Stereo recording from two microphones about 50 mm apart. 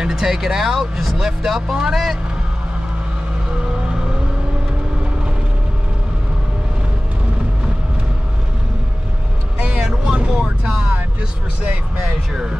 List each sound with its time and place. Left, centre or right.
0.0 s speech: centre
9.6 s vehicle: right
10.1 s speech: centre